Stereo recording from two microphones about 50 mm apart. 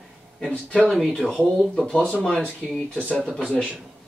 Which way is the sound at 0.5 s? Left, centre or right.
Left.